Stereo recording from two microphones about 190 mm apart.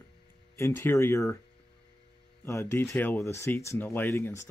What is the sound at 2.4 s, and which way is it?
Speech, 10° left (ahead or behind).